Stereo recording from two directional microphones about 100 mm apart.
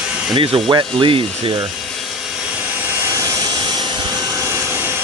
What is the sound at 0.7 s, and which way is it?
Ratchet, 55° right (ahead or behind).